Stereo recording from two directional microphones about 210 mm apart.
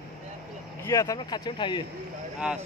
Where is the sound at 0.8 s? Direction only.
15° left (ahead or behind).